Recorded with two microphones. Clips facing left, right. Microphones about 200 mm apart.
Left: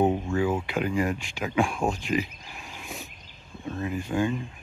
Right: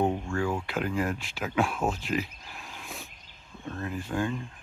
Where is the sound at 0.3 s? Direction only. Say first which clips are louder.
Left 4 dB; 5° left (ahead or behind).